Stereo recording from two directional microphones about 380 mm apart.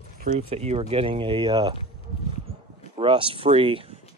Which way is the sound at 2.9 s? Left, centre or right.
Centre.